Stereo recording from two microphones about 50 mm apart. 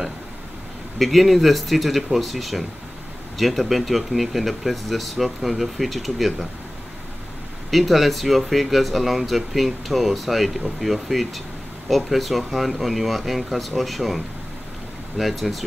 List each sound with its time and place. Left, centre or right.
0.9 s speech: centre
7.7 s speech: centre